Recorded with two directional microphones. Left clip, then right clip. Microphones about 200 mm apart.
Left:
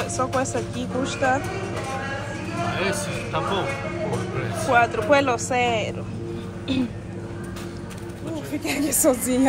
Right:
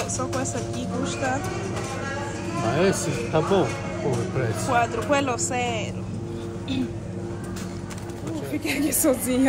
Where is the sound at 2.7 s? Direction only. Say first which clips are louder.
Right 4 dB; 45° right (ahead or behind).